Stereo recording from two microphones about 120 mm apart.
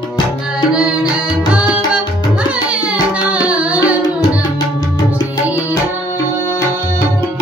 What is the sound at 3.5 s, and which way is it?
Music, 10° right (ahead or behind).